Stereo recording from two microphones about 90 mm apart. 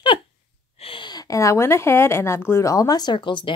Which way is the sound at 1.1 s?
40° left (ahead or behind).